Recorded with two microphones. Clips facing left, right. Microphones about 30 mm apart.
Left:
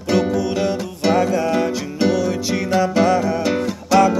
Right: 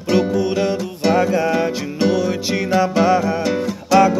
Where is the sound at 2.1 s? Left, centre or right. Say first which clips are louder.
Right 1 dB; centre.